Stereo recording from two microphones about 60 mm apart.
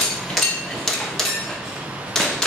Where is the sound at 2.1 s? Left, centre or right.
Centre.